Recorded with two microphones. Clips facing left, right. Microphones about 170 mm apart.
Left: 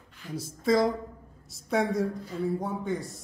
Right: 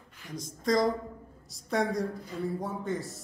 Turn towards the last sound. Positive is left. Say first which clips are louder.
# left 2 dB
turn(degrees=0)  # may be behind; listen again after turning